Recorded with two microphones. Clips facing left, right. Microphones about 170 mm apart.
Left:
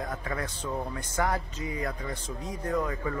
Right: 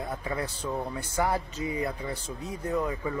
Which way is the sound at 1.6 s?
30° right (ahead or behind).